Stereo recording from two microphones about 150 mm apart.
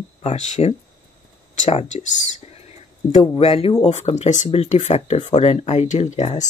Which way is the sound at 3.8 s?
50° left (ahead or behind).